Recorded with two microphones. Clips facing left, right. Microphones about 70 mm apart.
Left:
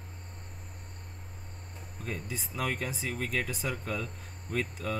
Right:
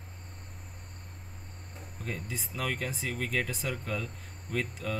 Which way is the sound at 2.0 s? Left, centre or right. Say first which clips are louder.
Even; centre.